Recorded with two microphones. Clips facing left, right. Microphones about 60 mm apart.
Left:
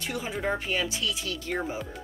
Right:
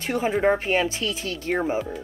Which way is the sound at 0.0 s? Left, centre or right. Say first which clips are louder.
Right 9 dB; right.